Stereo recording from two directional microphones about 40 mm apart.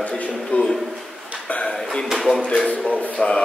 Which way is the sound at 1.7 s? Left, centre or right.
Left.